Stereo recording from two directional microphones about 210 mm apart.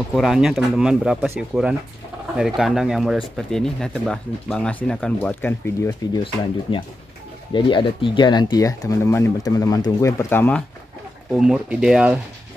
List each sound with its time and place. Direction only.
0.1 s speech: centre (ahead or behind)
11.3 s speech: 5° right (ahead or behind)